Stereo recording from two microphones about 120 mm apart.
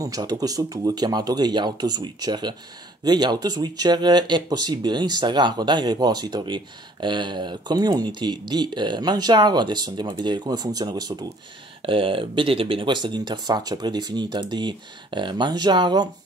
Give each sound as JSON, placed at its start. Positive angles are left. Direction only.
{"t": 0.0, "sound": "speech", "side_deg": -30}
{"t": 11.8, "sound": "speech", "side_deg": -45}